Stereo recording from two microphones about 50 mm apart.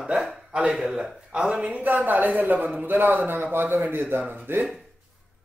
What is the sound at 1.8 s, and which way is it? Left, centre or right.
A man's voice, right.